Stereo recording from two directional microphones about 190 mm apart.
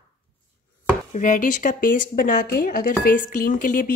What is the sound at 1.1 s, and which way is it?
A woman's voice, 45° left (ahead or behind).